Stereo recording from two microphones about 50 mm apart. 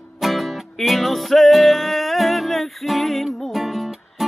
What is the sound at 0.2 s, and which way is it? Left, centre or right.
Music, centre.